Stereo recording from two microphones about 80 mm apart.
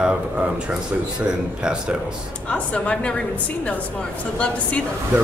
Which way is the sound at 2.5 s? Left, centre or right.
Centre.